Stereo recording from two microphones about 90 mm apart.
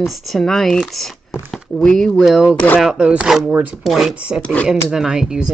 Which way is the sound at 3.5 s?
20° right (ahead or behind).